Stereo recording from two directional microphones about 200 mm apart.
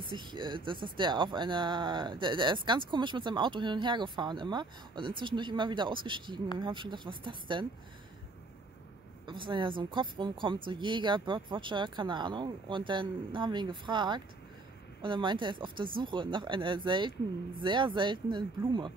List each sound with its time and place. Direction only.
0.0 s speech: 25° right (ahead or behind)
9.2 s speech: 25° right (ahead or behind)